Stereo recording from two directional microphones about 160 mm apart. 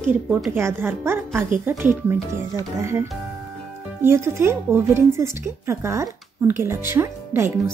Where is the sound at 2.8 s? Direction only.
15° right (ahead or behind).